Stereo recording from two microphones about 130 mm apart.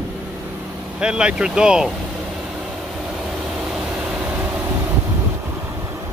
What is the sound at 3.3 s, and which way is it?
Vehicle, 5° right (ahead or behind).